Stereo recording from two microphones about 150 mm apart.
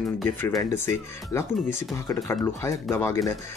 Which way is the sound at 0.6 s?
20° left (ahead or behind).